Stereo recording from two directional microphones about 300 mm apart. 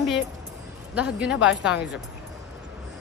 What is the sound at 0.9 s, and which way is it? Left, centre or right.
Speech, centre.